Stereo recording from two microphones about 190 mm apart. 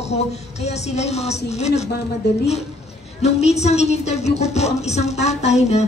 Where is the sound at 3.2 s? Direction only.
35° left (ahead or behind).